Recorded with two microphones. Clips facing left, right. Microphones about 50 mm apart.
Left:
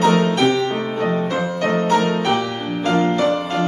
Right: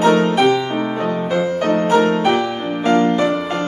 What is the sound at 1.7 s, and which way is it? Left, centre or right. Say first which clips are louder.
Music: right 3 dB; centre.